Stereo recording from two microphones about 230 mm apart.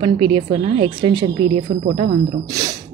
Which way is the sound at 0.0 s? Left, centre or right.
Right.